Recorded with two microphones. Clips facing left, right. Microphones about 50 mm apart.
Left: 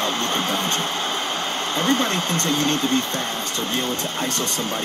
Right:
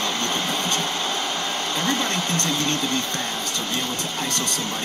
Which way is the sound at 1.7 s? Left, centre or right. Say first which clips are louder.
Left 4 dB; left.